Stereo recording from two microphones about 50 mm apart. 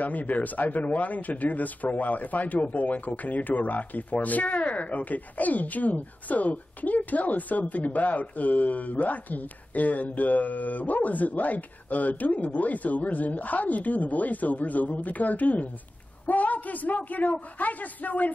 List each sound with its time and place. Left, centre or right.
0.0 s speech: left